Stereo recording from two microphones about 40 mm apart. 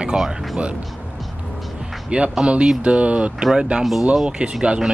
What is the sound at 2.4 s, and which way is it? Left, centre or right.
Speech, right.